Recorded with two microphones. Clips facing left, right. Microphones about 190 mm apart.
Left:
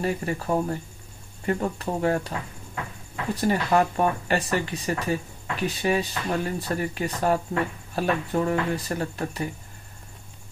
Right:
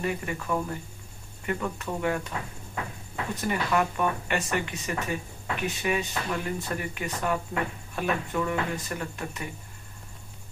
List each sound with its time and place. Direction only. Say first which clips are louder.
0.0 s speech: left 4 dB; 35° left (ahead or behind)
3.3 s speech: left 5 dB; 35° left (ahead or behind)